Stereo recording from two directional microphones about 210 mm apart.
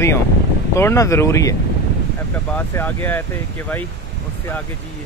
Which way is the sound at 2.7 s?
10° left (ahead or behind).